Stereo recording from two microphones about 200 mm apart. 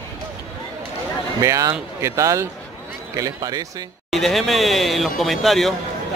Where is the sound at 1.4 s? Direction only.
15° right (ahead or behind).